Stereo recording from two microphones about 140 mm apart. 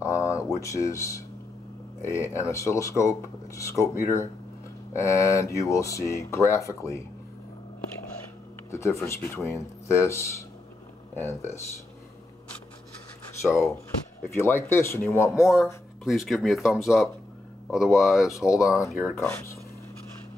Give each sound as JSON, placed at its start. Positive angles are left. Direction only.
{"t": 0.0, "sound": "speech", "side_deg": 20}
{"t": 8.6, "sound": "speech", "side_deg": 20}
{"t": 13.3, "sound": "speech", "side_deg": 20}
{"t": 15.3, "sound": "speech", "side_deg": 0}
{"t": 19.1, "sound": "speech", "side_deg": 20}